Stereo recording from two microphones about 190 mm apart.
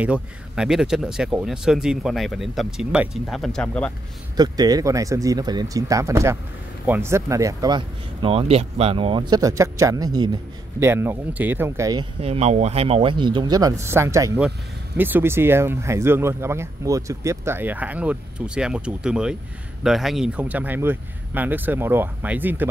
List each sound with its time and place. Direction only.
0.0 s speech: 5° right (ahead or behind)
4.4 s speech: 20° right (ahead or behind)
12.2 s speech: 35° right (ahead or behind); by 22.7 s 10° right (ahead or behind)